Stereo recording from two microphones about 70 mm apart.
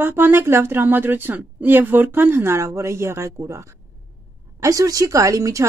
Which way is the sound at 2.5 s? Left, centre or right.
Right.